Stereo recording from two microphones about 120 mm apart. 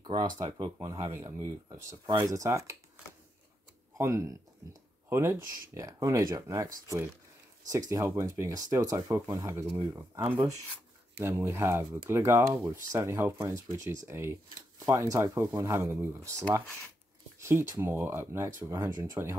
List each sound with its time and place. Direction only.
0.0 s speech: 35° right (ahead or behind)
4.0 s speech: 25° right (ahead or behind)
7.9 s speech: 25° right (ahead or behind)